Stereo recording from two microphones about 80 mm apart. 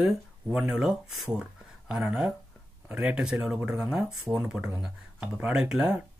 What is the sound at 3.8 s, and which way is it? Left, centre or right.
Speech, centre.